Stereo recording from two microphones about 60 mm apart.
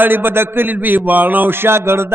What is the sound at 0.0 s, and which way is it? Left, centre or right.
A man's voice, right.